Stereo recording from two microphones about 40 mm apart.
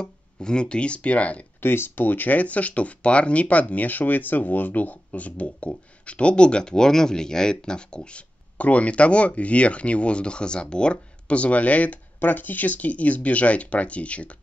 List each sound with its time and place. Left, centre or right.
0.0 s speech: left
1.6 s speech: left
3.6 s speech: left
8.5 s speech: left